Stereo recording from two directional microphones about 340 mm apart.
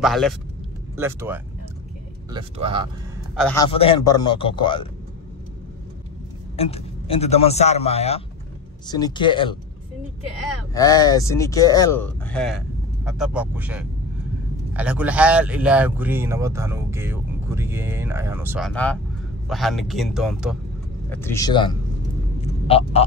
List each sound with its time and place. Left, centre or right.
0.0 s speech: centre
3.3 s speech: centre
6.5 s a man's voice: centre
10.7 s speech: centre